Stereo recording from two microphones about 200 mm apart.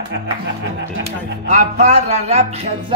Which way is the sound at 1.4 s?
35° right (ahead or behind).